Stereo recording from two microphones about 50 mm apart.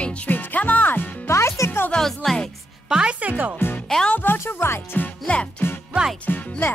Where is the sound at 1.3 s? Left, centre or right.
Left.